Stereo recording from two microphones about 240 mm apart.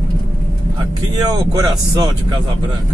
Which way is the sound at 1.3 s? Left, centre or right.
Centre.